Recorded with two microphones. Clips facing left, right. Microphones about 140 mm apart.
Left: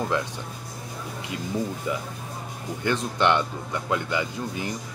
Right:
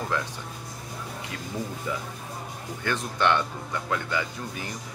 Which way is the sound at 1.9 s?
15° left (ahead or behind).